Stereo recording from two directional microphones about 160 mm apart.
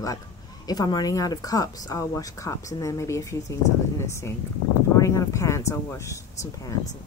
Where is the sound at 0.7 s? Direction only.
25° left (ahead or behind).